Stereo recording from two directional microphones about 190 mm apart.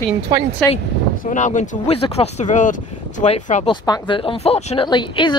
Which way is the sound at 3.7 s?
25° left (ahead or behind).